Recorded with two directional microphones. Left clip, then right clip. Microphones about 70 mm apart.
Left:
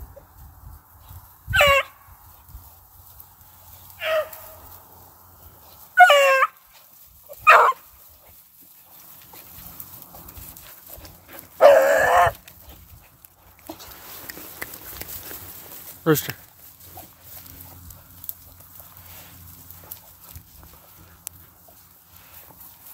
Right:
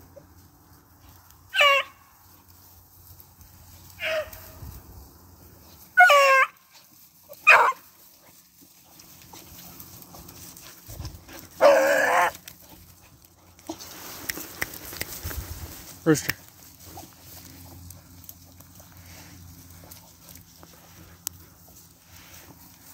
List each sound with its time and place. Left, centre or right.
1.5 s dog: left
3.9 s dog: left
5.7 s dog: centre
7.4 s bow-wow: left
11.0 s dog: centre
11.5 s dog: left
16.0 s a sound: left
17.0 s dog: centre